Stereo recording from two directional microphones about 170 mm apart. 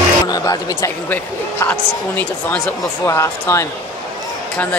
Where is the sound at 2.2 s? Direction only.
10° left (ahead or behind).